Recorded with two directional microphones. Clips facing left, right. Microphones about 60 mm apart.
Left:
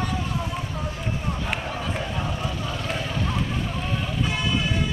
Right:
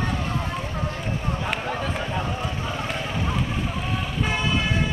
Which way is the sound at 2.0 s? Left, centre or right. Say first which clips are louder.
Right 1 dB; centre.